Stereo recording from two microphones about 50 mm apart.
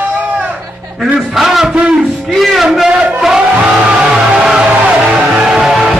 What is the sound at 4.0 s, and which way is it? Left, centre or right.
Music, centre.